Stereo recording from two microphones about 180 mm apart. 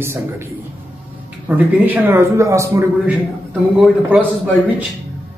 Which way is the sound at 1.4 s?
10° right (ahead or behind).